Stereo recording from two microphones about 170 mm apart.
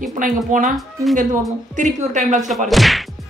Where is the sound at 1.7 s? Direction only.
45° right (ahead or behind).